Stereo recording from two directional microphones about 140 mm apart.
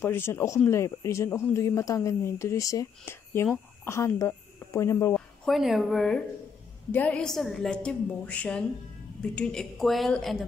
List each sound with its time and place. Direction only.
0.0 s a woman's voice: 15° left (ahead or behind)
5.1 s a woman's voice: 5° left (ahead or behind)